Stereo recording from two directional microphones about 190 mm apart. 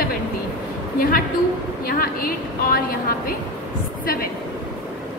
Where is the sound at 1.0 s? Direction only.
50° left (ahead or behind).